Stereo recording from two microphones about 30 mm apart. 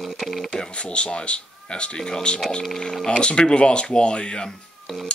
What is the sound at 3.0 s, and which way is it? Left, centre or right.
Speech, left.